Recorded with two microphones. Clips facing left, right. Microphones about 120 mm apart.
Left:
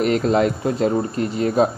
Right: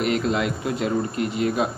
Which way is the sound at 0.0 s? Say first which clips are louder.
Left 5 dB; 40° left (ahead or behind).